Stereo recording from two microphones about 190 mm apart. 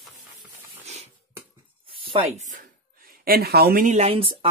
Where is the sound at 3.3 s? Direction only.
55° right (ahead or behind); by 4.5 s 30° right (ahead or behind).